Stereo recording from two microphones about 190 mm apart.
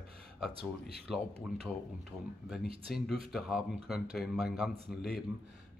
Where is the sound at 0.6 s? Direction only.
30° right (ahead or behind).